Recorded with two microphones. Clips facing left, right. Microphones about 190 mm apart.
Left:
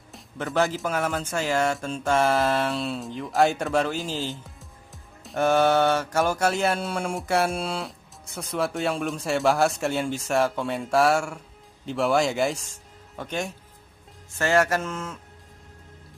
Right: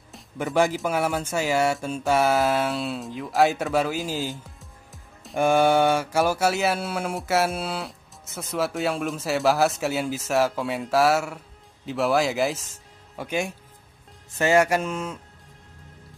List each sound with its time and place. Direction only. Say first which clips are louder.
0.1 s music: right 2 dB; centre (ahead or behind)
0.7 s mantra: right 2 dB; 10° right (ahead or behind)
4.6 s music: even; centre (ahead or behind)
5.4 s mantra: right 1 dB; 10° right (ahead or behind)
13.1 s speech: right 3 dB; 10° right (ahead or behind)
14.4 s mantra: right 2 dB; 15° right (ahead or behind)